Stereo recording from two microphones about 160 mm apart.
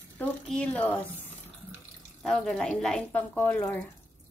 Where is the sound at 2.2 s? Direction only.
5° left (ahead or behind).